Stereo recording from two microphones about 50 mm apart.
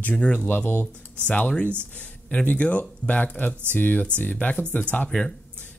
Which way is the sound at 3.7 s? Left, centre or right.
Left.